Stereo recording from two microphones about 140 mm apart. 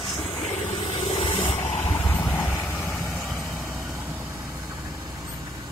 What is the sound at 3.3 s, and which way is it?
Vehicle, centre (ahead or behind).